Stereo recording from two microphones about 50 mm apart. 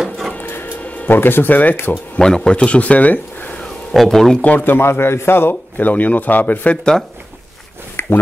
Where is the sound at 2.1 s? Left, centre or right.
Centre; by 3.5 s left.